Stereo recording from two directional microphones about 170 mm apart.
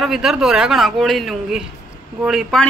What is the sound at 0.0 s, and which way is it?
Speech, centre (ahead or behind).